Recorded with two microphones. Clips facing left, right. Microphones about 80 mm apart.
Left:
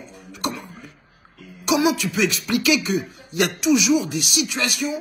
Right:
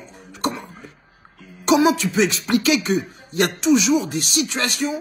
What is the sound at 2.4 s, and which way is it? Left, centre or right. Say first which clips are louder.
Speech: right 2 dB; right.